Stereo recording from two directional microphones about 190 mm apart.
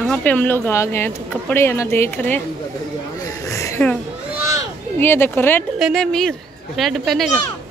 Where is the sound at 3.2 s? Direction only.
15° left (ahead or behind).